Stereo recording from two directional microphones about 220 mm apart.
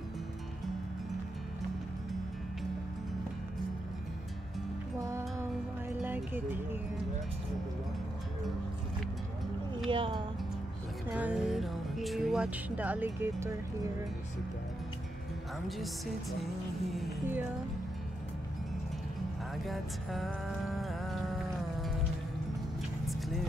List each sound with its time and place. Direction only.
4.9 s music: 15° right (ahead or behind)
9.8 s music: 25° right (ahead or behind)
11.1 s music: 5° right (ahead or behind)
16.8 s music: 5° right (ahead or behind)
19.6 s music: centre (ahead or behind)
23.0 s vehicle: centre (ahead or behind)